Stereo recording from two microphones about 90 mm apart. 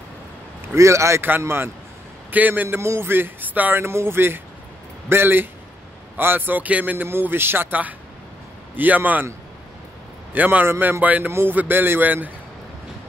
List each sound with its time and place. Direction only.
0.7 s a man's voice: 35° right (ahead or behind); by 9.3 s 20° right (ahead or behind)
10.3 s speech: 20° right (ahead or behind)